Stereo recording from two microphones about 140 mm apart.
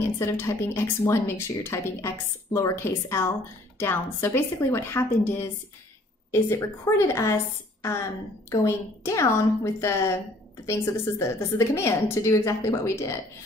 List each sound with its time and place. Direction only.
0.2 s a woman's voice: 20° left (ahead or behind)